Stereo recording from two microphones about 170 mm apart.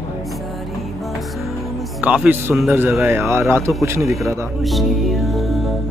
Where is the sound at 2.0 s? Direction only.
5° right (ahead or behind).